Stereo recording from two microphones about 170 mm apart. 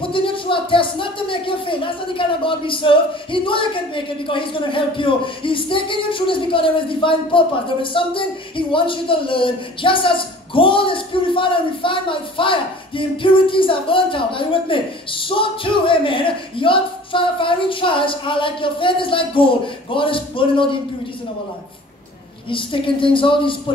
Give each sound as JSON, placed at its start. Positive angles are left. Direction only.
{"t": 0.0, "sound": "speech", "side_deg": 30}
{"t": 22.5, "sound": "speech", "side_deg": 30}